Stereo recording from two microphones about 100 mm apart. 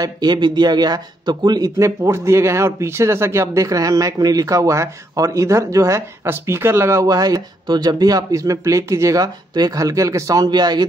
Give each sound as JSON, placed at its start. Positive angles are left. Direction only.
{"t": 0.0, "sound": "speech", "side_deg": -45}
{"t": 7.1, "sound": "speech", "side_deg": -40}